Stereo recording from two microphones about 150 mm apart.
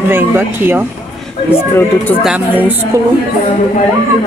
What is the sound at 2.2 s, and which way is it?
Speech, 10° right (ahead or behind).